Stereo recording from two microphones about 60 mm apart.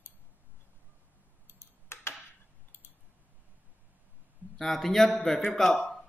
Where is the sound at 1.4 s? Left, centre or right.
Left.